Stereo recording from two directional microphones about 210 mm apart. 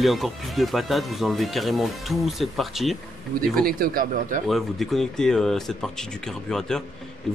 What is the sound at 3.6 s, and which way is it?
Speech, 45° right (ahead or behind).